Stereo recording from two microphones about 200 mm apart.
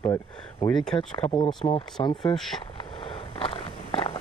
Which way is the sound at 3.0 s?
25° left (ahead or behind).